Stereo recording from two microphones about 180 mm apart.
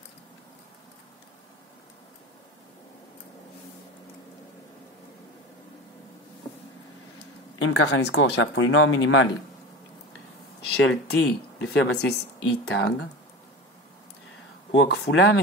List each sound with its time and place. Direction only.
7.5 s speech: 85° left
10.8 s speech: 90° left
11.7 s speech: 70° left (ahead or behind)
14.7 s speech: 75° left (ahead or behind)